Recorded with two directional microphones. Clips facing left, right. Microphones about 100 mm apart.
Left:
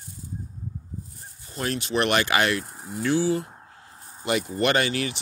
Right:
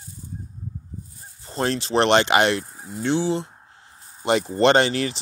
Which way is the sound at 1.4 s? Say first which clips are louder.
Right 5 dB; 30° right (ahead or behind).